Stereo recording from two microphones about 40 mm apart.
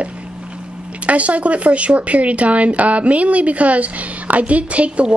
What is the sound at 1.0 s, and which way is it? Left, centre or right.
A woman's voice, right.